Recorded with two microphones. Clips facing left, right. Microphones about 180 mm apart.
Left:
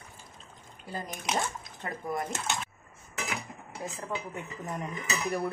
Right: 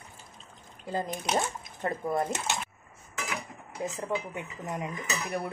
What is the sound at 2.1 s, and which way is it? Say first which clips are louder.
Speech: right 1 dB; 25° right (ahead or behind).